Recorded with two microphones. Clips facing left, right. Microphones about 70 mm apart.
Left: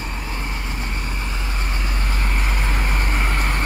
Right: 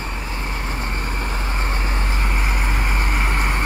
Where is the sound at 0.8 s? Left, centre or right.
Right.